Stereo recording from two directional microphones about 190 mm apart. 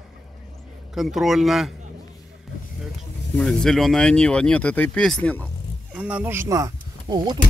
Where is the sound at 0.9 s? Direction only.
Centre (ahead or behind).